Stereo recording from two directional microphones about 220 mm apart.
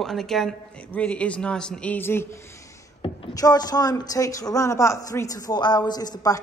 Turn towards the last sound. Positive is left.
turn(degrees=15)  # may be behind; listen again after turning